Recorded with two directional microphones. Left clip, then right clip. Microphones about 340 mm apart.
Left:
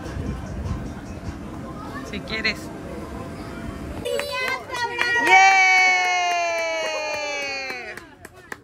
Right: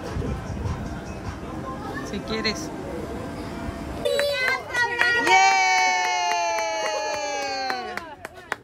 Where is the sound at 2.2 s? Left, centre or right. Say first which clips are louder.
Left 2 dB; centre.